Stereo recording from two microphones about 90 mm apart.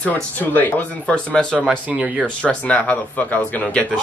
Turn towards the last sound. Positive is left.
turn(degrees=10)  # may be behind; listen again after turning